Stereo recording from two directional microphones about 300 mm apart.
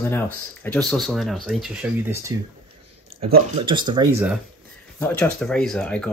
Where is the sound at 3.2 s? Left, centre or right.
Right.